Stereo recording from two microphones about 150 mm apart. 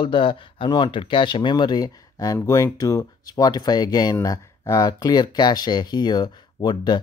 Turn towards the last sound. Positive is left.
turn(degrees=30)  # may be behind; listen again after turning